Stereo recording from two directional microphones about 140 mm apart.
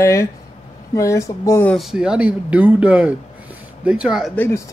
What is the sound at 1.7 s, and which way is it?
Speech, centre (ahead or behind).